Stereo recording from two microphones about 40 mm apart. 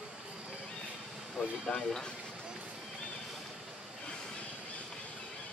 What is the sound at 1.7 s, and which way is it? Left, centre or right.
Speech, centre.